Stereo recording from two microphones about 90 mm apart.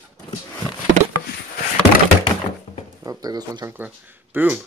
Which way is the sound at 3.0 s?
45° right (ahead or behind).